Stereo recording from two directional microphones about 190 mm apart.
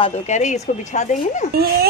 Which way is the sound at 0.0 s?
35° left (ahead or behind).